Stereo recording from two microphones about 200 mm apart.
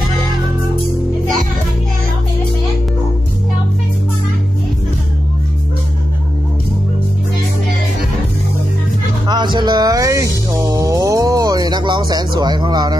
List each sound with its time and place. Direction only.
9.3 s music: 20° right (ahead or behind)